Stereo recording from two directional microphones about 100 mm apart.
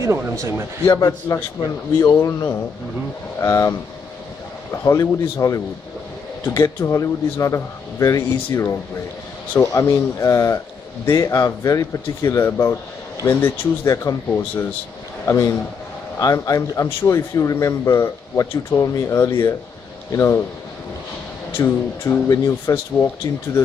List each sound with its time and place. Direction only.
0.0 s speech: 30° right (ahead or behind)
0.8 s a man's voice: 35° left (ahead or behind)
3.3 s a man's voice: 30° left (ahead or behind)
15.2 s a man's voice: 30° left (ahead or behind)
21.5 s a man's voice: 30° left (ahead or behind)